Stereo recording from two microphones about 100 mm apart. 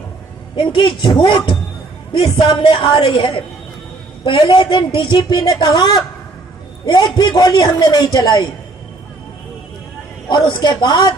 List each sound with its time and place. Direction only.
0.6 s a woman's voice: 55° left (ahead or behind)
10.2 s a woman's voice: 50° left (ahead or behind)